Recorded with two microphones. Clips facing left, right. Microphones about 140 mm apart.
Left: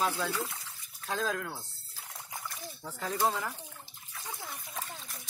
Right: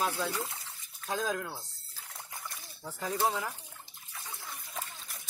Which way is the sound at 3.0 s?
10° right (ahead or behind).